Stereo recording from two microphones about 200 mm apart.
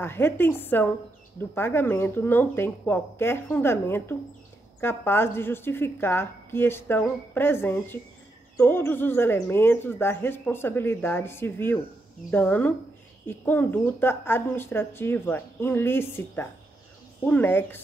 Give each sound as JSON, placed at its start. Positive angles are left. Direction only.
{"t": 0.0, "sound": "a woman's voice", "side_deg": 10}